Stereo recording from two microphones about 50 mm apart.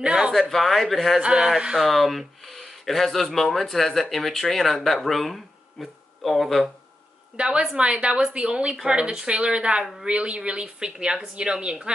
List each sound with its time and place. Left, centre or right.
0.0 s speech: centre
0.3 s speech: centre
1.2 s speech: centre
1.8 s speech: centre
7.3 s a woman's voice: centre